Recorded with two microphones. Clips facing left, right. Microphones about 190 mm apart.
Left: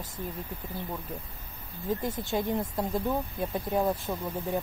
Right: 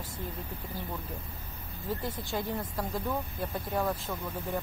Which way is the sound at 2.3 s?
25° left (ahead or behind).